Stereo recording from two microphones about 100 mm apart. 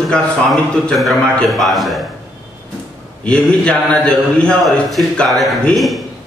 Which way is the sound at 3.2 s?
10° left (ahead or behind).